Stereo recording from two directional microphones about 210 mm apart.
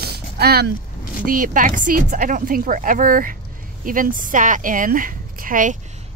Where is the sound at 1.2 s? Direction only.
40° right (ahead or behind).